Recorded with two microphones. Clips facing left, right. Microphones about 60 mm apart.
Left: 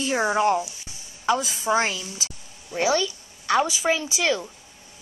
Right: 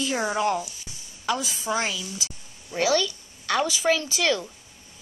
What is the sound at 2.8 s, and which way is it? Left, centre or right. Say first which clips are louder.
A woman's voice: even; left.